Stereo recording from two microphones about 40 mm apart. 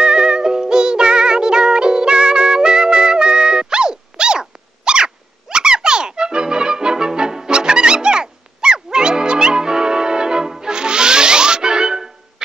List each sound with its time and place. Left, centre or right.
0.0 s music: centre